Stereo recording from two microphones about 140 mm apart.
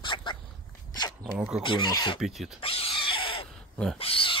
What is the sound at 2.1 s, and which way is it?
Speech, centre (ahead or behind).